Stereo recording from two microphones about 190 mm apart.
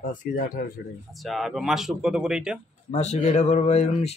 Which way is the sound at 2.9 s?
35° left (ahead or behind).